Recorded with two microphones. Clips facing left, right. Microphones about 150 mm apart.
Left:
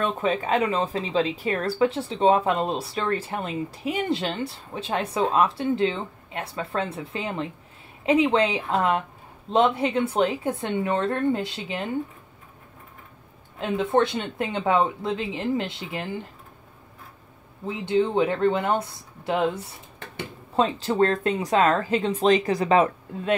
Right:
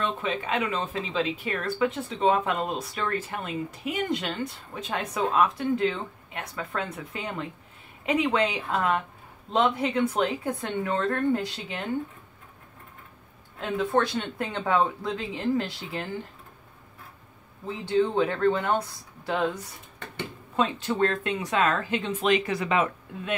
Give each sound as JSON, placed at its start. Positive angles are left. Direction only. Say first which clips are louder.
{"t": 0.0, "sound": "speech", "louder": "left 5 dB", "side_deg": 45}
{"t": 13.6, "sound": "speech", "louder": "left 3 dB", "side_deg": 20}
{"t": 17.6, "sound": "speech", "louder": "left 2 dB", "side_deg": 20}